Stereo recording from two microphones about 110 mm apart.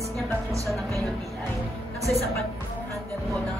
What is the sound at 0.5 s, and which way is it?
Music, 30° right (ahead or behind).